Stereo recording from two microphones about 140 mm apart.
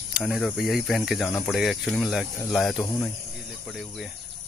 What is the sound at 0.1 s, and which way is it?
Speech, centre (ahead or behind).